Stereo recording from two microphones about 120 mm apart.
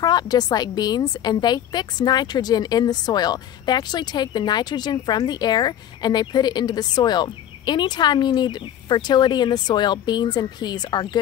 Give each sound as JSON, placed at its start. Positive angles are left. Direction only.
{"t": 0.0, "sound": "a woman's voice", "side_deg": 35}